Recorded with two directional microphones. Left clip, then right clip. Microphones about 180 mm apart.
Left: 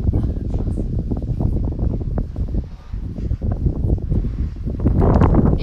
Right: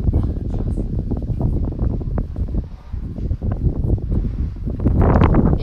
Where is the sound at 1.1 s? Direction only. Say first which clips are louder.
Even; 25° left (ahead or behind).